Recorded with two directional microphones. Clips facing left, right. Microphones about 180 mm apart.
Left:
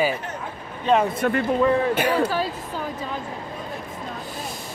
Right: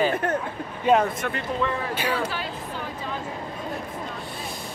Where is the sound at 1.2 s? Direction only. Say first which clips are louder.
Left 7 dB; 40° left (ahead or behind).